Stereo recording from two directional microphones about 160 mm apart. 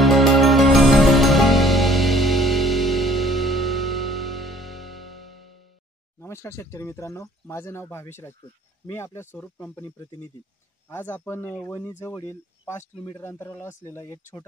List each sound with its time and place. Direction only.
0.0 s music: centre (ahead or behind)
6.1 s speech: 15° left (ahead or behind)